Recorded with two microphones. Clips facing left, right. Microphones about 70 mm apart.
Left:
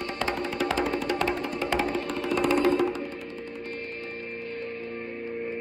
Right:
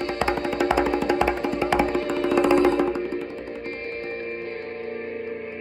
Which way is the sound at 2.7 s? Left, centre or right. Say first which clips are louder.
Right 3 dB; centre.